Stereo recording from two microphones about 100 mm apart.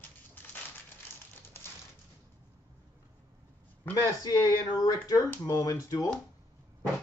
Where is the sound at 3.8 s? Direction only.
20° left (ahead or behind).